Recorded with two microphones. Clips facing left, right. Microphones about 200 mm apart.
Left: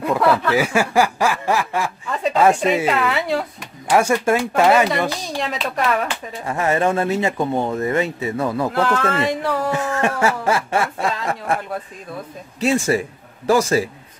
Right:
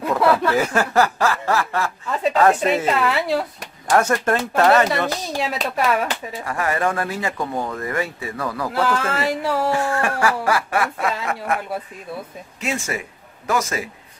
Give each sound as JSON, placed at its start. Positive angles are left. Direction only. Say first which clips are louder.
{"t": 0.0, "sound": "snicker", "louder": "even", "side_deg": 0}
{"t": 2.5, "sound": "speech", "louder": "left 1 dB", "side_deg": 0}
{"t": 3.9, "sound": "speech", "louder": "left 2 dB", "side_deg": 10}
{"t": 5.4, "sound": "speech", "louder": "even", "side_deg": -5}
{"t": 6.4, "sound": "speech", "louder": "left 4 dB", "side_deg": 25}
{"t": 8.7, "sound": "speech", "louder": "right 1 dB", "side_deg": -5}
{"t": 9.7, "sound": "speech", "louder": "even", "side_deg": 20}